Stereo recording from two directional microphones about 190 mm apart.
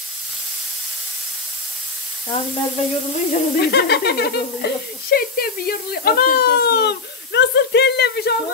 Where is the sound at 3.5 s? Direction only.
55° left (ahead or behind).